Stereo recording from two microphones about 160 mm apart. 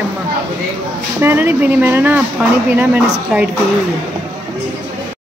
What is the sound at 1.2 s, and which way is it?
Speech, 10° right (ahead or behind).